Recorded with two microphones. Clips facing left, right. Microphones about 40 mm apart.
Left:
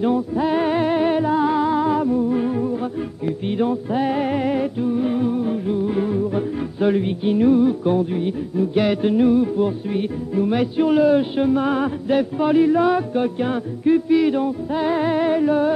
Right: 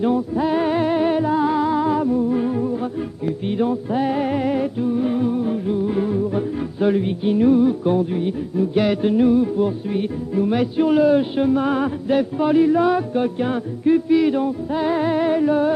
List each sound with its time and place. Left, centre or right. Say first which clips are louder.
0.0 s music: even; centre
7.3 s music: even; centre
10.3 s music: even; centre